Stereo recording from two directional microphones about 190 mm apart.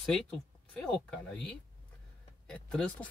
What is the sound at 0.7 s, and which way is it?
Speech, 5° left (ahead or behind).